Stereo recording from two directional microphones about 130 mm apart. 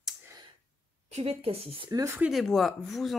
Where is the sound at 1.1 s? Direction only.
50° right (ahead or behind).